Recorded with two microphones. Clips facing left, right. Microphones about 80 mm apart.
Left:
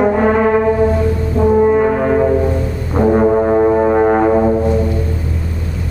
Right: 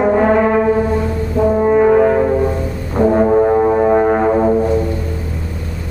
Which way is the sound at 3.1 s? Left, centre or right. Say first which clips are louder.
Even; centre.